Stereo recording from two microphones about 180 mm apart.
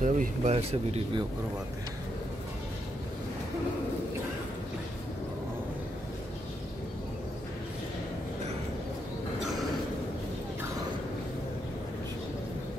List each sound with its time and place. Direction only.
0.0 s speech: 45° right (ahead or behind)